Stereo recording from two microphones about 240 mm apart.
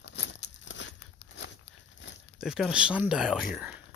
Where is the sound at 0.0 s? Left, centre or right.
Left.